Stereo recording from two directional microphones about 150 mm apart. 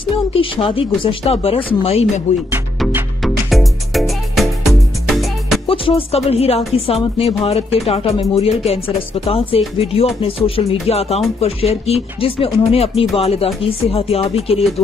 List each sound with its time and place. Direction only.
0.3 s speech: 40° left (ahead or behind)
3.2 s music: centre (ahead or behind)
5.7 s speech: 40° left (ahead or behind)